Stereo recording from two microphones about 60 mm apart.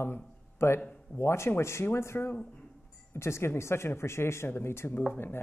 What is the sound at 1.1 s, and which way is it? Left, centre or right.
Speech, left.